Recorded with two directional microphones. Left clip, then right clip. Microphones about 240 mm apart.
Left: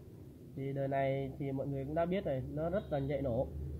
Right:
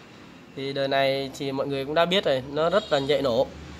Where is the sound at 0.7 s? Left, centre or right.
Right.